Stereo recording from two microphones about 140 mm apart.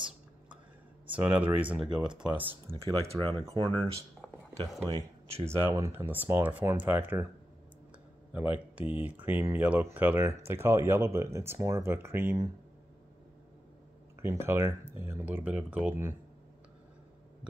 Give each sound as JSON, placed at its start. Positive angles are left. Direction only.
{"t": 1.1, "sound": "speech", "side_deg": -10}
{"t": 2.8, "sound": "speech", "side_deg": -45}
{"t": 3.2, "sound": "speech", "side_deg": -30}
{"t": 4.2, "sound": "a sound", "side_deg": 0}
{"t": 5.7, "sound": "speech", "side_deg": -20}
{"t": 8.3, "sound": "speech", "side_deg": -10}
{"t": 14.2, "sound": "speech", "side_deg": -20}